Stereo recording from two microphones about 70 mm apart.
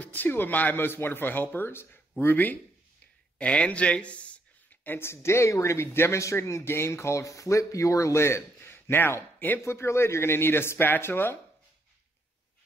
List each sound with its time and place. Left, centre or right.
0.0 s speech: left
4.8 s speech: left
9.7 s speech: left